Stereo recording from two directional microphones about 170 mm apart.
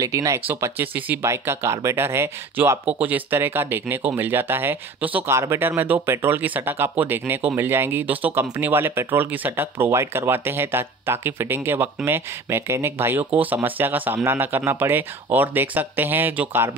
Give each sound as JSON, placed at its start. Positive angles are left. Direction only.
{"t": 0.0, "sound": "speech", "side_deg": -20}